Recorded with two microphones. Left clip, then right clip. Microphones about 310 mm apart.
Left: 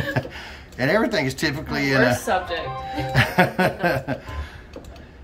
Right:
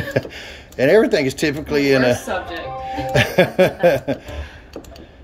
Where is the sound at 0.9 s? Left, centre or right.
Centre.